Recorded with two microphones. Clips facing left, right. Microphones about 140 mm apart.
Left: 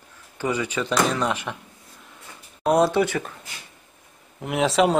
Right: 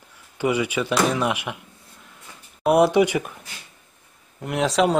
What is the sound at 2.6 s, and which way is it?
Speech, 15° right (ahead or behind).